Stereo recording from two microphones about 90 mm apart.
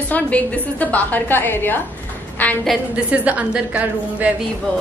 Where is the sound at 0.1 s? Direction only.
15° left (ahead or behind).